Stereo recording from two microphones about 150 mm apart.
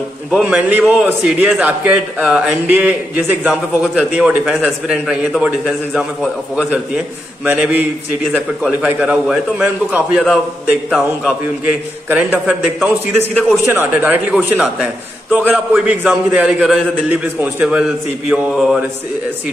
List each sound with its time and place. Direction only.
0.3 s a man's voice: 10° right (ahead or behind)
7.4 s a man's voice: 10° right (ahead or behind)
12.1 s a man's voice: 10° right (ahead or behind)
13.3 s a man's voice: 5° left (ahead or behind)
13.7 s a man's voice: 15° right (ahead or behind)